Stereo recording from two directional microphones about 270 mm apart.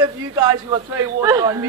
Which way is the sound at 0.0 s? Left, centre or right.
Centre.